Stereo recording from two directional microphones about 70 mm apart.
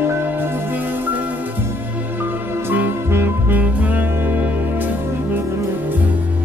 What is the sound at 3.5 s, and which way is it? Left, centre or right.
Music, right.